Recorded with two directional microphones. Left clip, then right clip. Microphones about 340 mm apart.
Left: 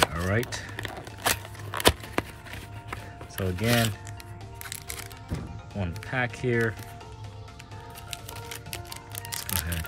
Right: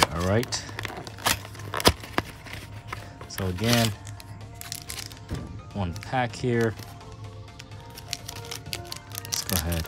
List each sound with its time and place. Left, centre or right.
0.0 s a sound: centre
4.6 s music: centre
5.8 s speech: centre
8.3 s music: centre